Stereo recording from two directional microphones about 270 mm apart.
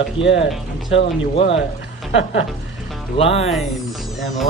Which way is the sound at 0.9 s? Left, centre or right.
Left.